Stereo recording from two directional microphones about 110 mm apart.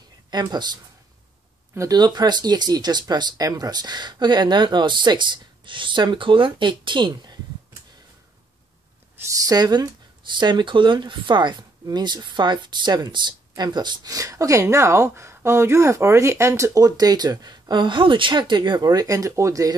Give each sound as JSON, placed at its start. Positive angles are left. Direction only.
{"t": 0.3, "sound": "speech", "side_deg": -40}
{"t": 1.8, "sound": "speech", "side_deg": -35}
{"t": 9.1, "sound": "speech", "side_deg": -30}